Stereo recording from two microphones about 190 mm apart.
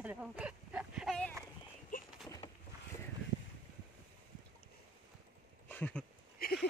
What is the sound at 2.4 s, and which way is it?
Boat, 30° left (ahead or behind).